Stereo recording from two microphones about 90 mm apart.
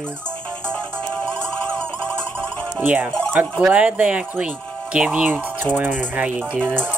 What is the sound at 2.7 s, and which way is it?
Speech, 20° right (ahead or behind).